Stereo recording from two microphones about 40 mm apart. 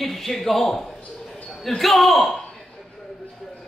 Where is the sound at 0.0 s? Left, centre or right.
Centre.